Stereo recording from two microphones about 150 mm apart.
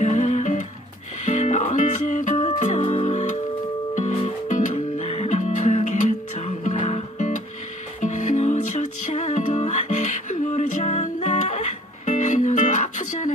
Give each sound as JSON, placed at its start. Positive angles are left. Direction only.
{"t": 0.0, "sound": "music", "side_deg": 50}
{"t": 2.4, "sound": "music", "side_deg": 45}